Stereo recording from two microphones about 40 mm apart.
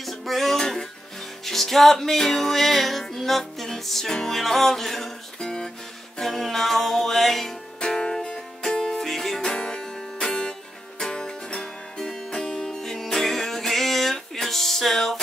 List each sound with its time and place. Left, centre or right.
0.0 s music: centre
7.8 s music: centre
9.5 s music: centre